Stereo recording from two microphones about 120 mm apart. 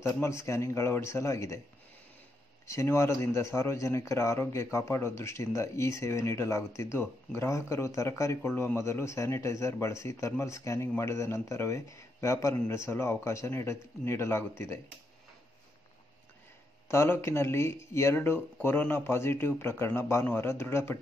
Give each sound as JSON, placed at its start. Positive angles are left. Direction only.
{"t": 0.0, "sound": "speech", "side_deg": 25}
{"t": 2.6, "sound": "speech", "side_deg": 25}
{"t": 16.9, "sound": "speech", "side_deg": 20}